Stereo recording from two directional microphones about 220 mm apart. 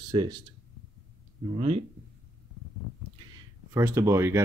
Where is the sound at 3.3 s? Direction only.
10° right (ahead or behind).